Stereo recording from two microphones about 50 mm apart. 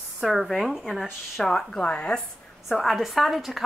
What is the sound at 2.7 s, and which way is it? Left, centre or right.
Speech, centre.